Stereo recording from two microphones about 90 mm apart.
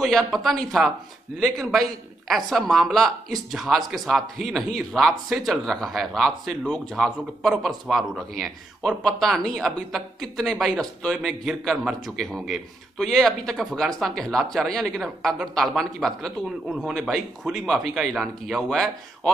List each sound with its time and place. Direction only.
0.0 s speech: 5° left (ahead or behind)